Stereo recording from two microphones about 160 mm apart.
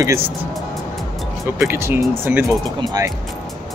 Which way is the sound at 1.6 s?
15° right (ahead or behind).